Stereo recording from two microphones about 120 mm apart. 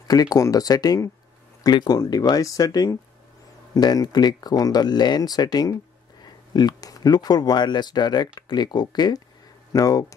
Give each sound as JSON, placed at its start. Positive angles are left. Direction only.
{"t": 0.1, "sound": "speech", "side_deg": 30}